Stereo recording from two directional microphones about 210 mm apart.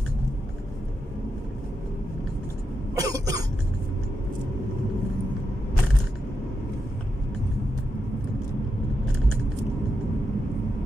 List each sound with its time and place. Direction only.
3.0 s cough: 15° right (ahead or behind)